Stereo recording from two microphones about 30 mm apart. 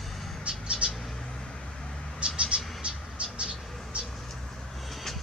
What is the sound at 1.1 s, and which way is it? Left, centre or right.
Vehicle, centre.